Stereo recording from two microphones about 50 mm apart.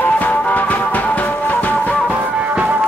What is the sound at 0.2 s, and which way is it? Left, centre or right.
Music, left.